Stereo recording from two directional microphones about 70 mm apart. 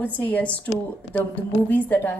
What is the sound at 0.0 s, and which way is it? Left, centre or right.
A woman's voice, left.